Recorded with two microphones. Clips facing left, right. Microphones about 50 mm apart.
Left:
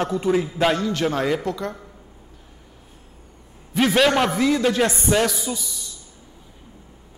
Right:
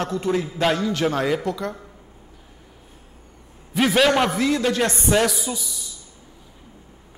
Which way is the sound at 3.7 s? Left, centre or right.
Centre.